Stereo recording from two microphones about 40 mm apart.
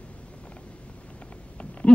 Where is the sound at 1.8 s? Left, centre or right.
Left.